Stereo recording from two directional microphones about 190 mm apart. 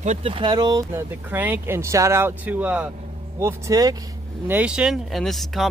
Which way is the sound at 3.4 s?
20° right (ahead or behind).